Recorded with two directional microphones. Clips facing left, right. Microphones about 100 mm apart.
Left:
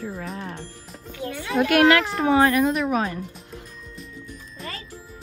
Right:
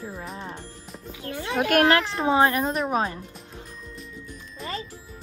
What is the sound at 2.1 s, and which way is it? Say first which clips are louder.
Speech: left 2 dB; 25° right (ahead or behind).